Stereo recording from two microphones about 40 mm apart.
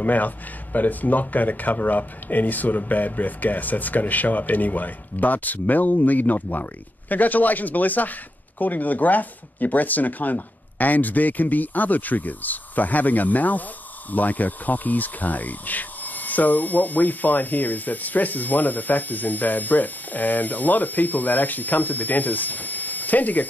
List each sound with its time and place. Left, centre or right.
0.0 s speech: left